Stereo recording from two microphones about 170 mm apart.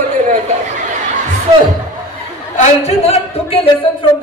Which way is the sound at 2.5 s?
45° left (ahead or behind).